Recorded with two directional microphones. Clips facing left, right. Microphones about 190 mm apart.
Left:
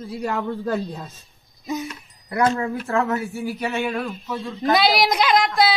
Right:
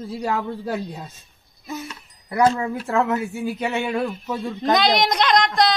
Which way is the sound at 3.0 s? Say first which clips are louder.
Right 1 dB; 20° right (ahead or behind).